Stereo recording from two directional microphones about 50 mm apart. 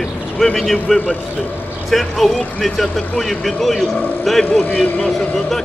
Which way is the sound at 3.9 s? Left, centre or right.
Left.